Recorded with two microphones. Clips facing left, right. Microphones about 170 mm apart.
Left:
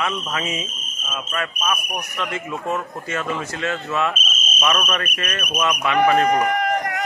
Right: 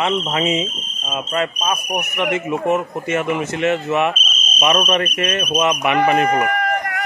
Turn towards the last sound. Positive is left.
turn(degrees=20)  # may be behind; listen again after turning